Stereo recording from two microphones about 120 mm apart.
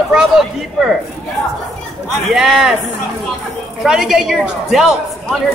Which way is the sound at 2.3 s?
5° right (ahead or behind).